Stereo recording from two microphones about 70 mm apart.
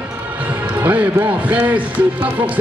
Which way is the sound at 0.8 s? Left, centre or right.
Right.